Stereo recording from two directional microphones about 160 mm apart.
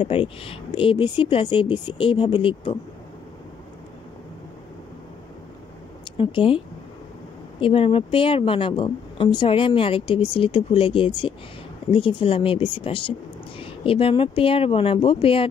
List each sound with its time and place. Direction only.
0.0 s a woman's voice: 35° left (ahead or behind)
6.1 s a woman's voice: 35° left (ahead or behind)
7.6 s a woman's voice: 35° left (ahead or behind)